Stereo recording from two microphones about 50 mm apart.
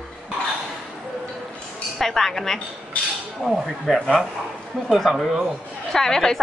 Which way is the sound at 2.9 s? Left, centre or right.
Left.